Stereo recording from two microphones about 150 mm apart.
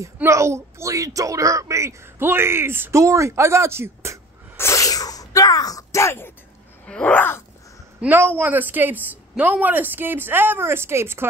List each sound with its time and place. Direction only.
0.0 s speech: 20° right (ahead or behind)
4.6 s sneeze: 20° left (ahead or behind)
6.9 s a sound: 10° left (ahead or behind)
8.0 s speech: 15° right (ahead or behind)